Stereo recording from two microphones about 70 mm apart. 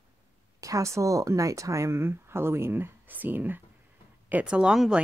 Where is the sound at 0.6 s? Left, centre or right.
Right.